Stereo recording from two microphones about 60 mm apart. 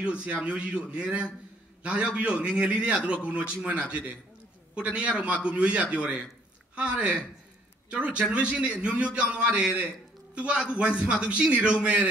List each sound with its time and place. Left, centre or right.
0.0 s a man's voice: centre